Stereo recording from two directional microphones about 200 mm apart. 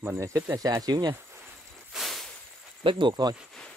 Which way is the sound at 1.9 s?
Centre (ahead or behind).